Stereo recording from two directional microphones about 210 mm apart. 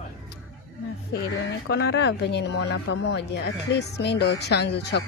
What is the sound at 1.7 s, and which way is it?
Speech, 55° left (ahead or behind).